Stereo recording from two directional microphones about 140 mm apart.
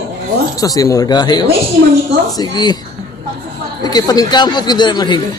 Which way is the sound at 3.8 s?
30° left (ahead or behind).